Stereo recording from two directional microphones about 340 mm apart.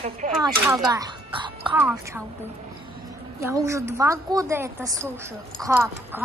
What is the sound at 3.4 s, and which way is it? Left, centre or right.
A woman's voice, centre.